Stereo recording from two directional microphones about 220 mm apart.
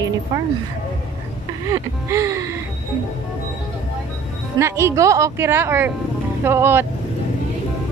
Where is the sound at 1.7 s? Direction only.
15° right (ahead or behind).